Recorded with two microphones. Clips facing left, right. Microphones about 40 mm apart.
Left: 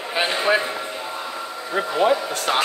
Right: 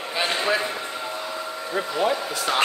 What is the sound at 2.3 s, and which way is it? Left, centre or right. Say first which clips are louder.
Speech: left 2 dB; left.